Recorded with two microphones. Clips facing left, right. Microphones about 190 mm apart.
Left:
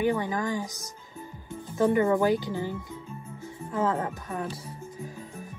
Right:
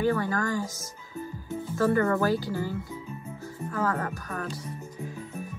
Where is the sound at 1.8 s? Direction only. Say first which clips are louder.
Left 2 dB; 15° left (ahead or behind).